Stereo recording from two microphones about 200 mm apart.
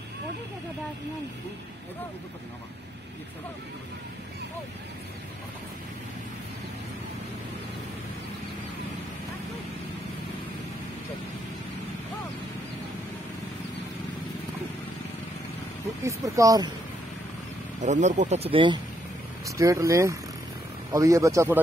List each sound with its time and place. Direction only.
16.0 s speech: 15° right (ahead or behind)
17.8 s speech: 35° right (ahead or behind); by 21.5 s 15° right (ahead or behind)